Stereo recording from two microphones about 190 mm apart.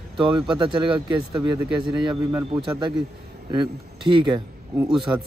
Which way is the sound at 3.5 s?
25° right (ahead or behind).